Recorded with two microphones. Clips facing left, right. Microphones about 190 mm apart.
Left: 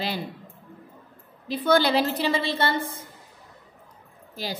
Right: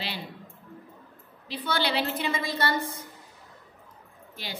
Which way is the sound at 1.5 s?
50° left (ahead or behind).